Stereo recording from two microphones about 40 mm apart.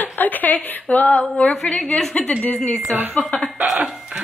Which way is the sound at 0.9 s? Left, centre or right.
Left.